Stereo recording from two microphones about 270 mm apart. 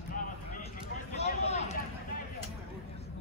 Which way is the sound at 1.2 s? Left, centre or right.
Left.